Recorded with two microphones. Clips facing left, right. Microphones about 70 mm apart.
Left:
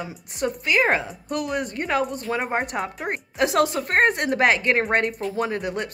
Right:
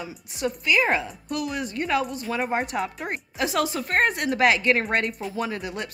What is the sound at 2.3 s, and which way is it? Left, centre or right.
Speech, left.